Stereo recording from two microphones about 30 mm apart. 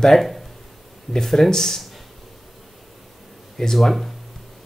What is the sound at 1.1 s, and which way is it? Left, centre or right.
Speech, centre.